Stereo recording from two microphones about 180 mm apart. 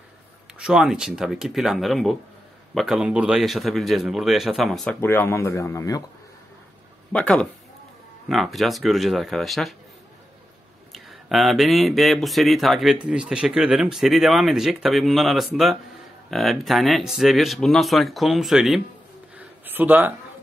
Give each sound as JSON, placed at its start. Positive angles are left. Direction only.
{"t": 0.6, "sound": "speech", "side_deg": -5}
{"t": 5.0, "sound": "speech", "side_deg": 15}
{"t": 7.1, "sound": "speech", "side_deg": 5}
{"t": 10.9, "sound": "speech", "side_deg": 0}
{"t": 19.3, "sound": "a sound", "side_deg": -10}